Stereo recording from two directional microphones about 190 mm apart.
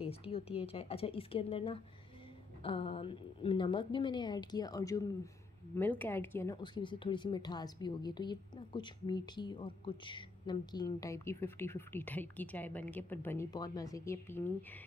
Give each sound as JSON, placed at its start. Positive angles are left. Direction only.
{"t": 0.0, "sound": "a woman's voice", "side_deg": 30}